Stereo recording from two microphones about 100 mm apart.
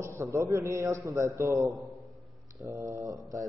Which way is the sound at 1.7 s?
Centre (ahead or behind).